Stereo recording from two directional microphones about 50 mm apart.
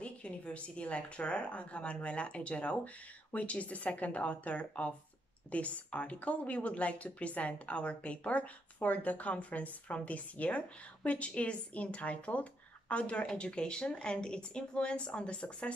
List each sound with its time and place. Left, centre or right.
0.0 s speech: left